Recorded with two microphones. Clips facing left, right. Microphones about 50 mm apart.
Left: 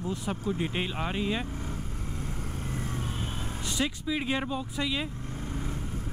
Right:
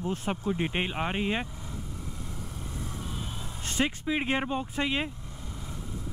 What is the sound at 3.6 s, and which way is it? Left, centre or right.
Speech, right.